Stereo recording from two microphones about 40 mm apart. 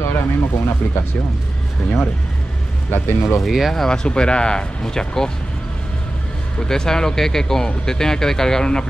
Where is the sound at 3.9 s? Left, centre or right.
Left.